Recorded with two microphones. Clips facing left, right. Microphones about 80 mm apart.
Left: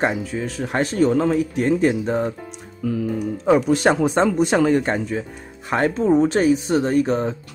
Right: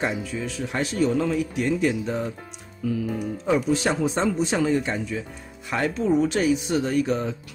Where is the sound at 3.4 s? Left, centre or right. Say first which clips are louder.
Left 6 dB; left.